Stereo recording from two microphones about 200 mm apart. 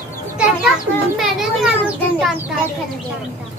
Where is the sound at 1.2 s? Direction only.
Centre (ahead or behind).